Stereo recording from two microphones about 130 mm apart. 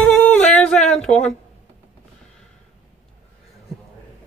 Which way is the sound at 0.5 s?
5° left (ahead or behind).